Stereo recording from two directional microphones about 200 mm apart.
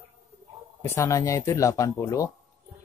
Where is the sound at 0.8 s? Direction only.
10° left (ahead or behind).